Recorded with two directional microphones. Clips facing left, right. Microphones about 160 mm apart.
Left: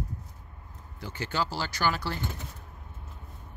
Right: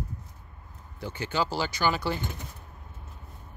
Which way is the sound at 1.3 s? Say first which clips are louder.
Right 3 dB; 15° right (ahead or behind).